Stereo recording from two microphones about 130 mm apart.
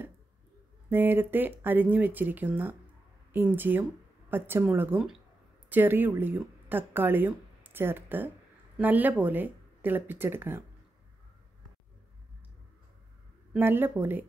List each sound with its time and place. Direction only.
0.8 s speech: 15° right (ahead or behind)
13.6 s speech: 15° right (ahead or behind)